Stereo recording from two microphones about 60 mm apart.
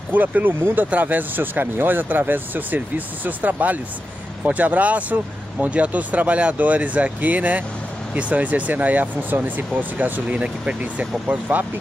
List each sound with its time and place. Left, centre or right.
0.1 s speech: right
10.2 s speech: centre